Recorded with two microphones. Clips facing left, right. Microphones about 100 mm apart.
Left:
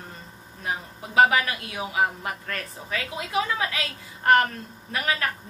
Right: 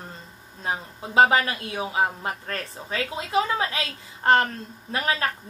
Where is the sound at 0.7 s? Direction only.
30° right (ahead or behind).